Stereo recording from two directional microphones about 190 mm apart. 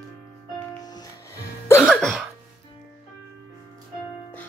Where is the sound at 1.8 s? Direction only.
Centre (ahead or behind).